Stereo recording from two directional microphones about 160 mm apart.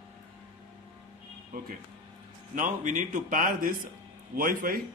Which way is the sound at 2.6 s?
55° right (ahead or behind).